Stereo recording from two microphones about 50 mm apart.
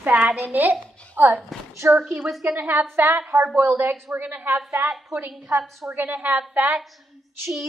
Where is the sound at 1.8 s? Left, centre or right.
Right.